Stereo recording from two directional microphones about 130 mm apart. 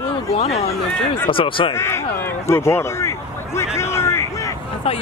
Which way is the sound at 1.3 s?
45° left (ahead or behind).